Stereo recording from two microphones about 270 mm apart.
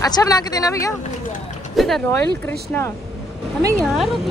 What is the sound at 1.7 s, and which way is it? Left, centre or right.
Speech, centre.